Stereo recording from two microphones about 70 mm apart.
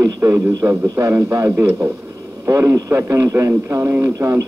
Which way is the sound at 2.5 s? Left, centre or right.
Right.